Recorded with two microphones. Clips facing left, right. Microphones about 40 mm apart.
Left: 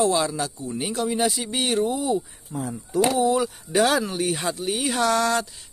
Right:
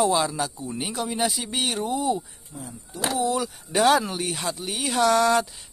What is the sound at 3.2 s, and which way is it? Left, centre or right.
Speech, centre.